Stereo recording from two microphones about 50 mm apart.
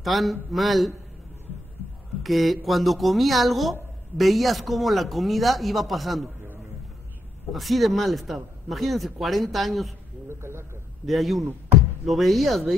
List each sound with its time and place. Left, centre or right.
0.0 s speech: centre
2.2 s speech: centre
7.5 s speech: centre
10.2 s a sound: right
11.1 s speech: centre